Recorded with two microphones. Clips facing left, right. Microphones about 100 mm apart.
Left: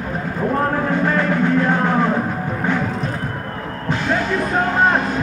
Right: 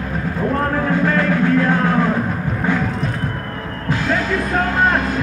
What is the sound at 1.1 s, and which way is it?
Music, 15° left (ahead or behind).